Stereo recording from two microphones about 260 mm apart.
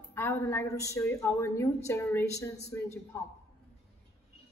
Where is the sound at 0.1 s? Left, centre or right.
Centre.